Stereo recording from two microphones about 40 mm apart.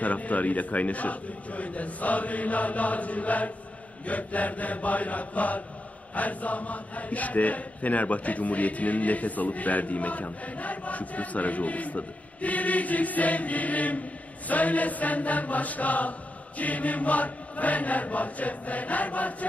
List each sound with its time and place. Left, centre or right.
0.0 s speech: left